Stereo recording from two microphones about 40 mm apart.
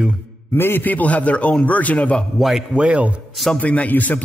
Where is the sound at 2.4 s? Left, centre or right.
Centre.